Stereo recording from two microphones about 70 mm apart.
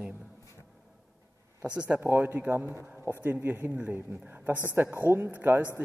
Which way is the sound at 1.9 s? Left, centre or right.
Right.